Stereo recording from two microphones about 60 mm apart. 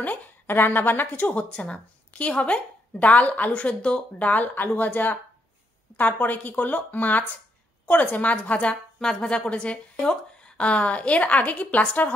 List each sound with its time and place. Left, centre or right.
0.0 s a woman's voice: left